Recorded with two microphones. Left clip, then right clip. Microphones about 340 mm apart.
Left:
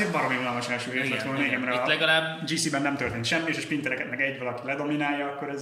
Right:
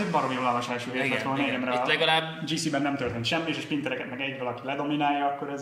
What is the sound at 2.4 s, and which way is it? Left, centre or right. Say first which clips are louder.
A man's voice: left 1 dB; centre.